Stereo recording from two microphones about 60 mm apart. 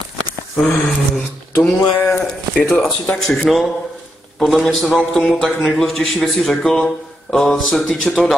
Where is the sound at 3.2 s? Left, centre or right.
Centre.